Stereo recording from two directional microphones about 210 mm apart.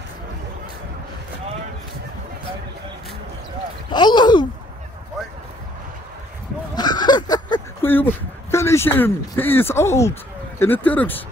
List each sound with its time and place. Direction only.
3.9 s a sound: 20° left (ahead or behind)
6.7 s fowl: 20° left (ahead or behind)
7.9 s speech: 10° left (ahead or behind)